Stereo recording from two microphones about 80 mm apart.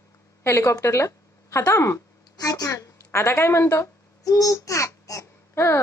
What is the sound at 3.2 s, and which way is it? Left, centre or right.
A child's voice, left.